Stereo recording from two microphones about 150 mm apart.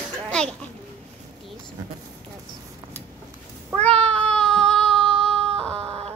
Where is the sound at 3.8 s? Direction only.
5° left (ahead or behind).